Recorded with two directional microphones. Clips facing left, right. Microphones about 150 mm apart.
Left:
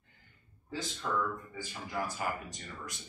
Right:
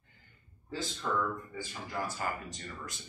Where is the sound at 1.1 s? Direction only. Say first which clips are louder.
Right 1 dB; 5° left (ahead or behind).